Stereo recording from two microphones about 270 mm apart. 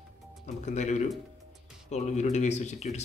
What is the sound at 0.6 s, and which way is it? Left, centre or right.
Speech, left.